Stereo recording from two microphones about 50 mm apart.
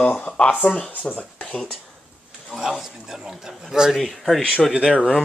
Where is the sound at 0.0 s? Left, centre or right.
Left.